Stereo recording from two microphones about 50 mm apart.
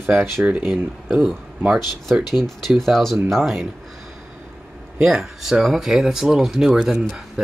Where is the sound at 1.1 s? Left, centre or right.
Centre.